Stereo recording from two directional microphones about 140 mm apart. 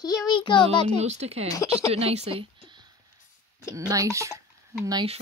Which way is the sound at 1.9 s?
50° right (ahead or behind).